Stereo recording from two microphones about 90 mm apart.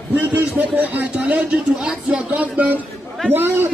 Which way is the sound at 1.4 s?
5° right (ahead or behind).